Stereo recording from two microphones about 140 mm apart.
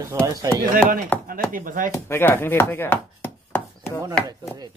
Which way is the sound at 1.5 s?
75° right (ahead or behind).